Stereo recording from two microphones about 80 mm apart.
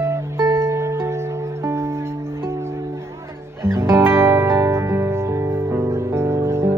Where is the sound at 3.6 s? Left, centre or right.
Right.